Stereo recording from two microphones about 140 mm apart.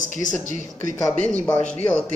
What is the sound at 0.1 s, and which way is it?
Speech, 65° left (ahead or behind).